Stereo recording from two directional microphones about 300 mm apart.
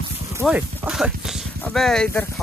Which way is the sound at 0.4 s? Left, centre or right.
Centre.